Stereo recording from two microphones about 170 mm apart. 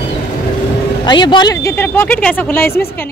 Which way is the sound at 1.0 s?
25° left (ahead or behind).